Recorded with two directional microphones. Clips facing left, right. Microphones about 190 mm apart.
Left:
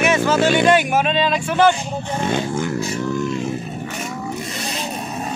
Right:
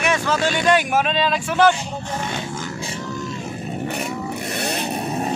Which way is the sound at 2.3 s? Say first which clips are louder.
Left 7 dB; 55° left (ahead or behind).